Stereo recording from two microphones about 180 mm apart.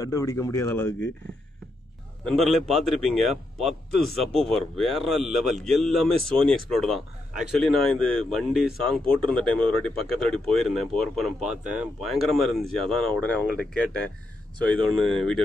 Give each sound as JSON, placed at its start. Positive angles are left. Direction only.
{"t": 0.0, "sound": "speech", "side_deg": 15}
{"t": 2.2, "sound": "speech", "side_deg": 0}
{"t": 3.5, "sound": "a man's voice", "side_deg": -35}
{"t": 4.4, "sound": "speech", "side_deg": 0}